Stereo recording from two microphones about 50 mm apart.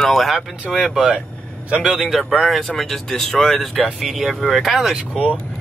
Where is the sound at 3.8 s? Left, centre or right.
Centre.